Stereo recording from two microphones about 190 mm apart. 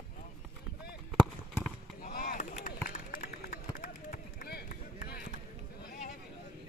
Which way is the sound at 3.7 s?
45° left (ahead or behind).